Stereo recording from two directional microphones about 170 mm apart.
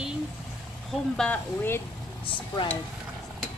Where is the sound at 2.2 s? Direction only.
30° left (ahead or behind).